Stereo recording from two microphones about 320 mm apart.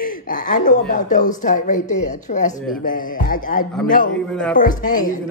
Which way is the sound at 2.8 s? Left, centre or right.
Left.